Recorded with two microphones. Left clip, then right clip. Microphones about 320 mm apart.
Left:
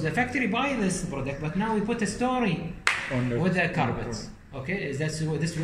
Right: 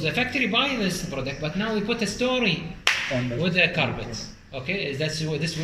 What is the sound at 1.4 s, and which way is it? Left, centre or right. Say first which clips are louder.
Speech: even; centre.